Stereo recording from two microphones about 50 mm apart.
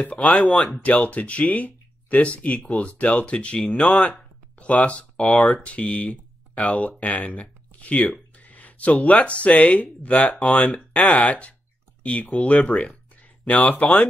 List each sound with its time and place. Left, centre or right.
0.0 s speech: left